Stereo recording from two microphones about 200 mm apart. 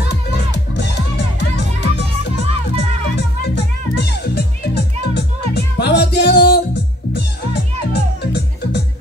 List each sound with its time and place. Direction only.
0.1 s music: 60° left (ahead or behind)
3.2 s music: 60° left (ahead or behind)
7.9 s music: 55° left (ahead or behind)